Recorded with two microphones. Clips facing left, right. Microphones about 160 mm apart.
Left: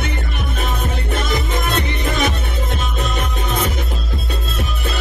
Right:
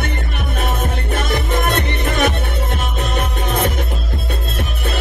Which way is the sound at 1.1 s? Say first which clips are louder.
Right 2 dB; 60° right (ahead or behind).